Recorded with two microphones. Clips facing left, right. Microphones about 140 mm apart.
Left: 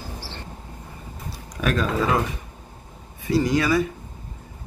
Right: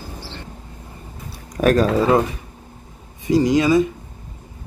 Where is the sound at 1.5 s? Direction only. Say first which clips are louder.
Right 8 dB; 45° right (ahead or behind).